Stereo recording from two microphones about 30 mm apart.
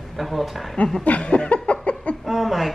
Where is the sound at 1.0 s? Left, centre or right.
Left.